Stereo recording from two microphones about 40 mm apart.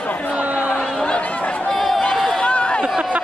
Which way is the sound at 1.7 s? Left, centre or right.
Centre.